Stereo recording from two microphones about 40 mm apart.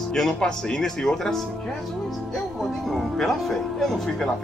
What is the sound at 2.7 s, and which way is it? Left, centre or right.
Speech, centre.